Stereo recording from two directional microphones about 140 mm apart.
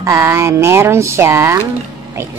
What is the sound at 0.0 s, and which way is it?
Speech, 20° right (ahead or behind).